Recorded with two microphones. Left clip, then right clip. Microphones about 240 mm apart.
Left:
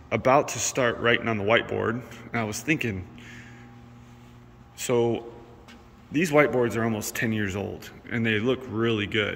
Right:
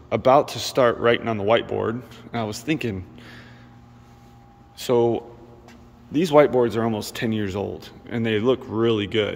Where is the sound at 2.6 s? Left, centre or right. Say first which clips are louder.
Right 1 dB; centre.